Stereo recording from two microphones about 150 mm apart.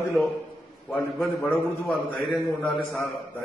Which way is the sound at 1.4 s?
10° left (ahead or behind).